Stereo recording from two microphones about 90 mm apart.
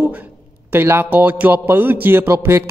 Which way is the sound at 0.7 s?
25° right (ahead or behind).